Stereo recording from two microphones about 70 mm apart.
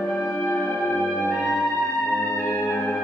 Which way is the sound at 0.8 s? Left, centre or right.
Centre.